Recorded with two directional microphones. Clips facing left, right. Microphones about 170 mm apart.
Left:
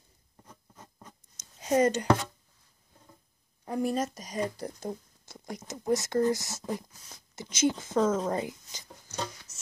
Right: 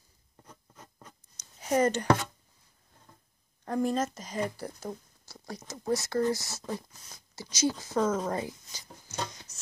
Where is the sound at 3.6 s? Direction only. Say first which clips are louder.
Right 1 dB; 10° left (ahead or behind); by 8.4 s 30° left (ahead or behind).